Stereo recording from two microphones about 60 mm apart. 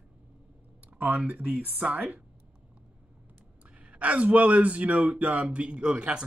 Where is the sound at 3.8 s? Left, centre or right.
Right.